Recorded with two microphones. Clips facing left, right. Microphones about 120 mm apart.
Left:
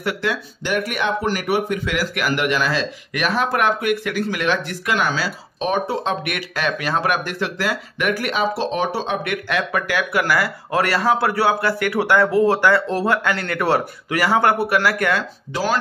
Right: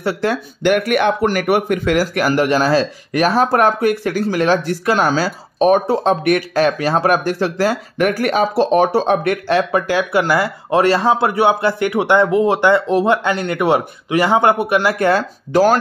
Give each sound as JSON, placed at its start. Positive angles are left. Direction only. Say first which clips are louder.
{"t": 0.0, "sound": "speech", "louder": "right 5 dB", "side_deg": -30}
{"t": 0.3, "sound": "speech", "louder": "right 7 dB", "side_deg": -55}
{"t": 15.5, "sound": "speech", "louder": "right 9 dB", "side_deg": -45}